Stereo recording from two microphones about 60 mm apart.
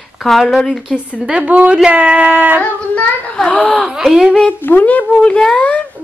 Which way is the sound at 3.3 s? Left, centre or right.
Centre.